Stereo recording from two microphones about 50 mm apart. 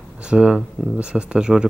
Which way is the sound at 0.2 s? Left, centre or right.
Centre.